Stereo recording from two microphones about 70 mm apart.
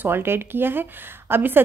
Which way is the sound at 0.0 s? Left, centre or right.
Right.